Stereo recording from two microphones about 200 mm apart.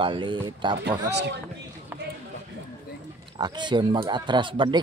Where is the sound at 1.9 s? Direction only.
10° right (ahead or behind).